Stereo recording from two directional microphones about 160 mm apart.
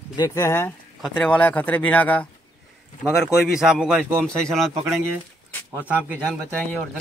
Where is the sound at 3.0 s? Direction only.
Centre (ahead or behind).